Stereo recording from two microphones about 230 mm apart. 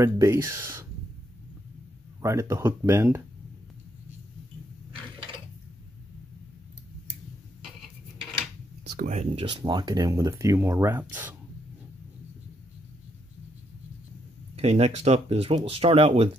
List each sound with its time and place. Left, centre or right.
0.0 s speech: centre
2.2 s speech: centre
8.8 s speech: right; by 11.3 s centre
14.5 s speech: right